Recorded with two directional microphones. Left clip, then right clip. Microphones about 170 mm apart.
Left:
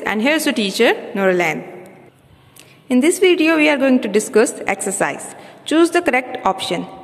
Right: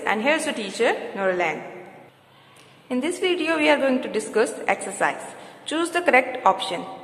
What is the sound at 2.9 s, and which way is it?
A woman's voice, 40° left (ahead or behind).